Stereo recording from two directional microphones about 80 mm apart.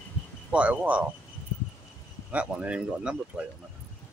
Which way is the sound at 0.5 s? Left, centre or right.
Centre.